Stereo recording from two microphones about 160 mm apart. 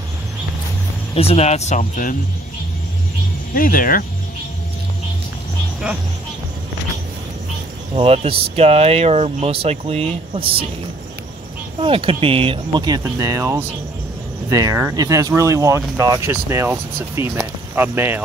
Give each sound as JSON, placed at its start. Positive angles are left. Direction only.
{"t": 1.1, "sound": "speech", "side_deg": 40}
{"t": 3.5, "sound": "speech", "side_deg": 60}
{"t": 7.9, "sound": "speech", "side_deg": -35}
{"t": 11.8, "sound": "speech", "side_deg": -35}